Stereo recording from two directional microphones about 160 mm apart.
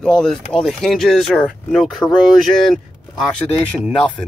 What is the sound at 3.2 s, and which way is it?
Speech, 5° left (ahead or behind).